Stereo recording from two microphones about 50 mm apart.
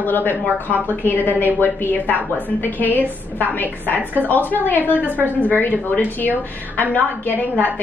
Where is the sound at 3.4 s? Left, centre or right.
Left.